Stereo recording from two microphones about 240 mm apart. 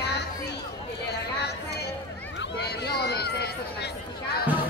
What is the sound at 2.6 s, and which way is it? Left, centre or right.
Chatter, left.